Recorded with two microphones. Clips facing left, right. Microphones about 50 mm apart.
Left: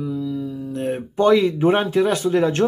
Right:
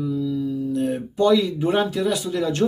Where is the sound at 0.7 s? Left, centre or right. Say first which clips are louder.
Right 1 dB; left.